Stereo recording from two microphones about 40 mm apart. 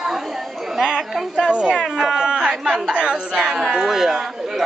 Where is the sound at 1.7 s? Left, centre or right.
Centre.